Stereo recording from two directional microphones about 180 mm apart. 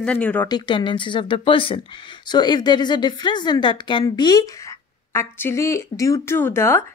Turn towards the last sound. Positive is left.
turn(degrees=15)  # may be behind; listen again after turning